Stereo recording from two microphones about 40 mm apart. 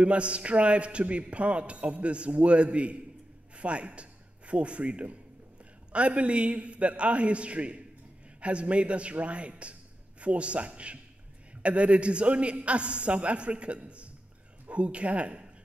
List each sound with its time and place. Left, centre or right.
0.0 s a man's voice: right